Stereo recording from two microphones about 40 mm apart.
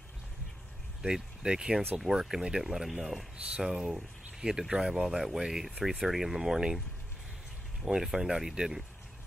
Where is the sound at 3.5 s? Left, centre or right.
Centre.